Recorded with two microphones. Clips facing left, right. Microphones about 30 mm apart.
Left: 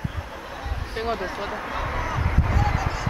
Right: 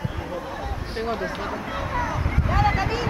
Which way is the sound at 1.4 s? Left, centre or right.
Centre.